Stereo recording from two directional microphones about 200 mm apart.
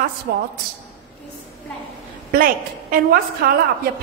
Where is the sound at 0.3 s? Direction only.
55° right (ahead or behind).